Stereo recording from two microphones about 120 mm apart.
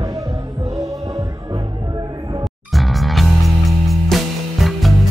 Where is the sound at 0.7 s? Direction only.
30° right (ahead or behind).